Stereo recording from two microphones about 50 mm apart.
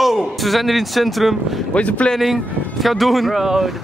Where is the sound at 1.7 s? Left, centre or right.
Left.